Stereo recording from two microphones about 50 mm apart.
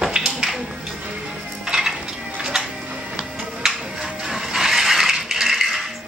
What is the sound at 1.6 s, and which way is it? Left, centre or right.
Music, centre.